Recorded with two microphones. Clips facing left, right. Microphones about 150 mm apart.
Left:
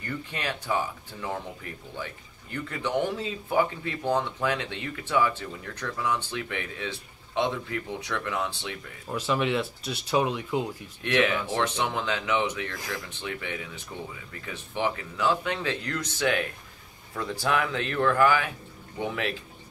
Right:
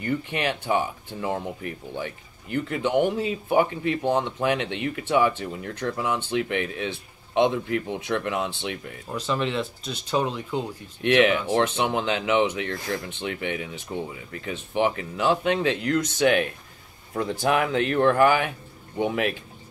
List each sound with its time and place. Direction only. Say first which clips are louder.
0.0 s speech: right 7 dB; 20° right (ahead or behind)
2.5 s speech: right 6 dB; 20° right (ahead or behind)
9.1 s speech: even; 5° left (ahead or behind)
11.0 s speech: right 5 dB; 20° right (ahead or behind)